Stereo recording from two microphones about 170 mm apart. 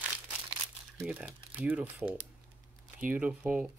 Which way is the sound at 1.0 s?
5° right (ahead or behind).